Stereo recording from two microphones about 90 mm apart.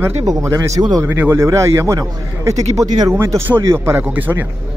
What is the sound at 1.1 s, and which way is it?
A man's voice, 25° right (ahead or behind).